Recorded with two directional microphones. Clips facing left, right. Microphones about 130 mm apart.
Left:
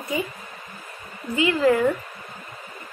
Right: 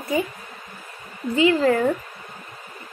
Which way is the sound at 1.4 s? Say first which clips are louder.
Right 1 dB; 30° right (ahead or behind).